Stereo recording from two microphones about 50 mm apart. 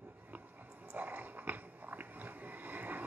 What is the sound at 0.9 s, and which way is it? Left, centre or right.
Biting, right.